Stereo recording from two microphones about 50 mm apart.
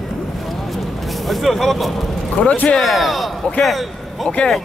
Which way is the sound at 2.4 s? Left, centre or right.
Left.